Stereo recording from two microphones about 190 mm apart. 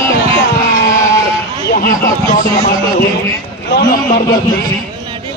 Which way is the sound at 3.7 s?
60° left (ahead or behind).